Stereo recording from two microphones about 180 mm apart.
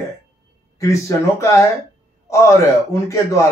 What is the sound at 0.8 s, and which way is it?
A man's voice, 15° left (ahead or behind).